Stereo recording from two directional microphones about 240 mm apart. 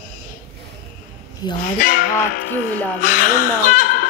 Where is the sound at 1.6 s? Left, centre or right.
Left.